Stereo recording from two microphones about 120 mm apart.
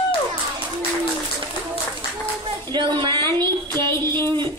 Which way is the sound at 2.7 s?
40° right (ahead or behind).